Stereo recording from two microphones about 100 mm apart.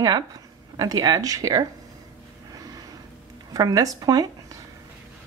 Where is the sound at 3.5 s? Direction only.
40° right (ahead or behind).